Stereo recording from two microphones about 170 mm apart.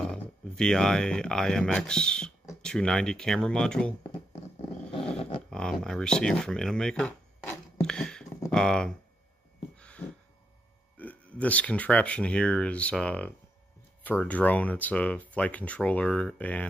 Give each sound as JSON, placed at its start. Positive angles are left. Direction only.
{"t": 0.1, "sound": "speech", "side_deg": 5}
{"t": 4.3, "sound": "dog", "side_deg": 35}
{"t": 5.5, "sound": "speech", "side_deg": 5}
{"t": 7.3, "sound": "chopping", "side_deg": 15}
{"t": 7.8, "sound": "a sound", "side_deg": 5}
{"t": 8.5, "sound": "speech", "side_deg": 5}
{"t": 9.8, "sound": "a sound", "side_deg": 5}
{"t": 11.0, "sound": "speech", "side_deg": 10}